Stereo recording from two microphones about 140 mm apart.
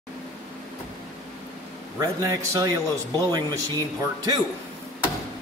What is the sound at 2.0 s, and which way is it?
Speech, 25° right (ahead or behind).